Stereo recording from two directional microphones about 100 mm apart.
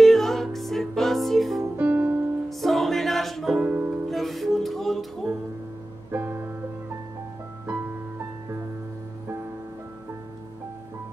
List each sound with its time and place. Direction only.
0.0 s music: centre (ahead or behind)
1.6 s music: 20° right (ahead or behind)
2.6 s music: centre (ahead or behind)
3.6 s music: 15° right (ahead or behind)
4.1 s music: centre (ahead or behind)
6.1 s music: 25° right (ahead or behind)